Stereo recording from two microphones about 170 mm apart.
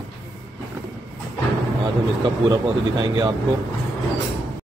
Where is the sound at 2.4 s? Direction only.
25° right (ahead or behind).